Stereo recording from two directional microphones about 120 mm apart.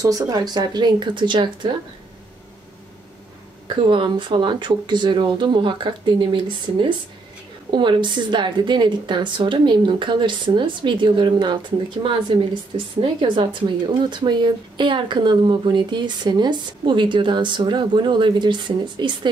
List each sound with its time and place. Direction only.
0.0 s a woman's voice: 30° right (ahead or behind)
3.6 s a woman's voice: 45° right (ahead or behind)